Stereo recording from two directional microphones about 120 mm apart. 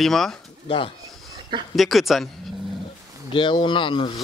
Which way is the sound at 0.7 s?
50° left (ahead or behind).